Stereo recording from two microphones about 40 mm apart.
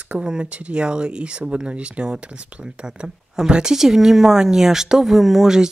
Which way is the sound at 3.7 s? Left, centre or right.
Centre.